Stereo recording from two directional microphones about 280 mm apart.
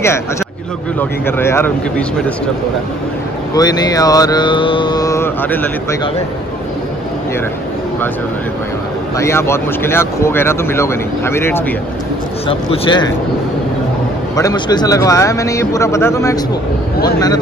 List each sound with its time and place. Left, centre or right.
0.9 s mantra: centre
3.5 s mantra: centre
9.2 s mantra: centre
14.3 s mantra: centre